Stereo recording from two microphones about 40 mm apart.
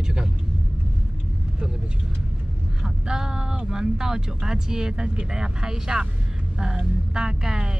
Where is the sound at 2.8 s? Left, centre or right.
Centre.